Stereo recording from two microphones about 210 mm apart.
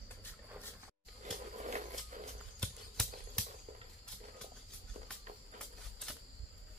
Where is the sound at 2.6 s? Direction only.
5° left (ahead or behind).